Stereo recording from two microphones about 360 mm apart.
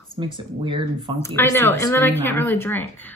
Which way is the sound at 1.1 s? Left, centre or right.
Centre.